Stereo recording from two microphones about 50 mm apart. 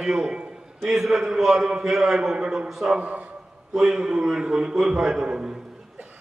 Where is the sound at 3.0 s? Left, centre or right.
Right.